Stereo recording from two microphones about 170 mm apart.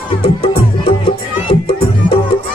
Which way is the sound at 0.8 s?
30° left (ahead or behind).